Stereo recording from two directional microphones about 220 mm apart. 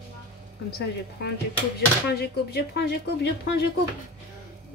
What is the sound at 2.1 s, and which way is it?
Speech, 45° left (ahead or behind).